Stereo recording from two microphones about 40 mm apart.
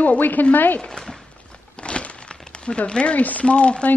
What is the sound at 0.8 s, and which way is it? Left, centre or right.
Speech, centre.